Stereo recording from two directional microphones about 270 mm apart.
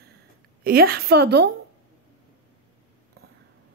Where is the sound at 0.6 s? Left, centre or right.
Right.